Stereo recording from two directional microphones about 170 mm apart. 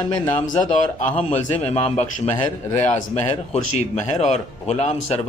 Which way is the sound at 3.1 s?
40° left (ahead or behind).